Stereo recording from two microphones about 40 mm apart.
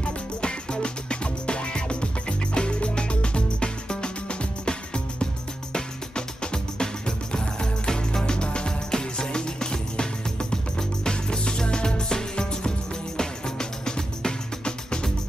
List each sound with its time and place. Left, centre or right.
0.0 s music: left